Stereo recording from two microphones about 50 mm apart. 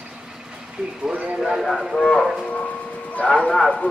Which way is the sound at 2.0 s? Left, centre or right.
Centre.